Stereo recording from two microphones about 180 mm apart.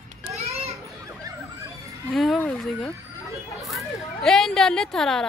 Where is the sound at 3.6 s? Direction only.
Centre (ahead or behind).